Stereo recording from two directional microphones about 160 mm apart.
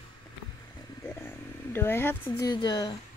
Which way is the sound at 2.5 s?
30° left (ahead or behind).